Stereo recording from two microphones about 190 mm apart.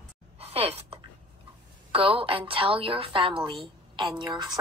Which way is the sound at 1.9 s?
30° right (ahead or behind).